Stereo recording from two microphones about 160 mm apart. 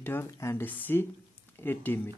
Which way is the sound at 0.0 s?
15° left (ahead or behind).